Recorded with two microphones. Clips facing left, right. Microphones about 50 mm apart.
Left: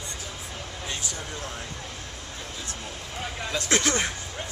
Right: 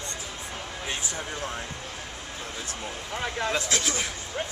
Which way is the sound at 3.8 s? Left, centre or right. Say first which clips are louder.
Left 4 dB; left.